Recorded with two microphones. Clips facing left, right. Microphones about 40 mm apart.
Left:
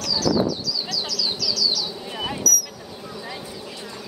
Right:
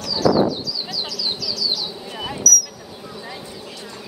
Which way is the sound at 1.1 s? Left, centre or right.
Right.